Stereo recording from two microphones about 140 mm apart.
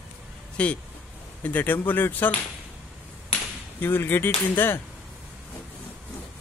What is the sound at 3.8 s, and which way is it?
Speech, 15° left (ahead or behind).